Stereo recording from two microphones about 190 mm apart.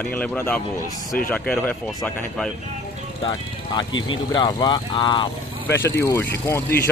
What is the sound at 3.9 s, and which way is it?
Speech, 90° left.